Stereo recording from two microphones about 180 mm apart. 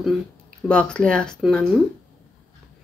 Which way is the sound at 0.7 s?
5° left (ahead or behind).